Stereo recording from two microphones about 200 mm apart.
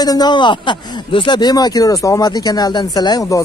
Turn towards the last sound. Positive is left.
turn(degrees=20)  # may be behind; listen again after turning